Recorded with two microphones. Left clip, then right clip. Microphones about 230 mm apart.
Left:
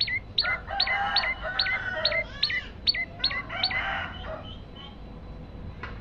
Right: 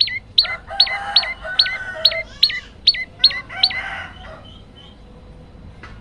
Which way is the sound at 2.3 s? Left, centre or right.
Centre.